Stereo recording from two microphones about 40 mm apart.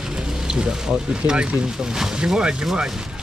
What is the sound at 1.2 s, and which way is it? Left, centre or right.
Speech, right.